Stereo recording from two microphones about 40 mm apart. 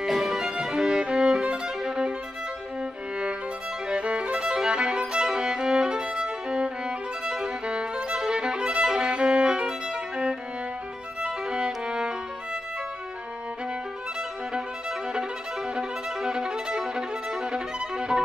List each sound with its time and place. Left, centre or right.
0.0 s music: centre
0.4 s music: centre
1.8 s violin: centre
2.8 s music: right
3.9 s violin: right
4.4 s violin: centre
11.2 s music: right
14.5 s violin: centre